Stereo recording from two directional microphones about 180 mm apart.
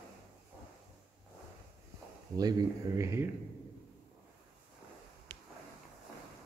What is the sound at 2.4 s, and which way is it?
Speech, 20° right (ahead or behind).